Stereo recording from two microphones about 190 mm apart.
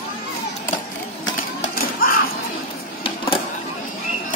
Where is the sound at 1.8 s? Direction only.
50° left (ahead or behind).